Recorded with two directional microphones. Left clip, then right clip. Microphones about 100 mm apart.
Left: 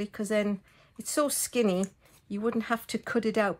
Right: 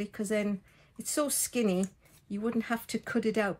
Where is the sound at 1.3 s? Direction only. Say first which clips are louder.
Left 3 dB; 40° left (ahead or behind).